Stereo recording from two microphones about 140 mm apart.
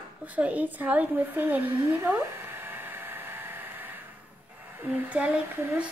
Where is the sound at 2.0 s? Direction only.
15° right (ahead or behind).